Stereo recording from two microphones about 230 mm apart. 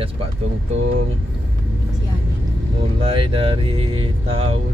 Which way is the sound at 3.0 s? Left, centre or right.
Right.